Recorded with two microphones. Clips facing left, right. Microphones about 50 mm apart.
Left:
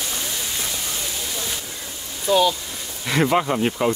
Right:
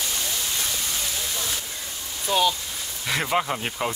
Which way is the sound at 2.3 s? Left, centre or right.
Centre.